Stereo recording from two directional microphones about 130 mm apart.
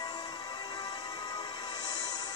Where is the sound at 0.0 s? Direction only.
35° left (ahead or behind).